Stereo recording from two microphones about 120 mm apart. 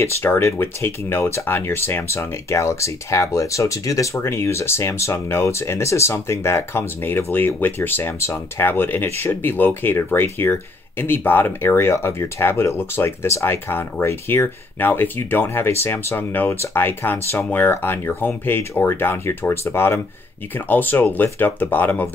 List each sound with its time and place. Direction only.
0.0 s speech: 25° left (ahead or behind)